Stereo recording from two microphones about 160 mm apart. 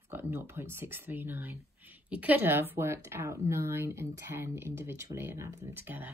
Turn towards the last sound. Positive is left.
turn(degrees=-10)  # may be behind; listen again after turning